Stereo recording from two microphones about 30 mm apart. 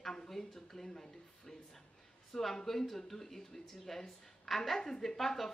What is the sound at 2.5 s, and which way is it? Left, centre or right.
Speech, centre.